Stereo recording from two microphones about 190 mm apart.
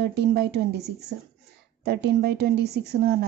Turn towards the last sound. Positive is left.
turn(degrees=-60)  # may be behind; listen again after turning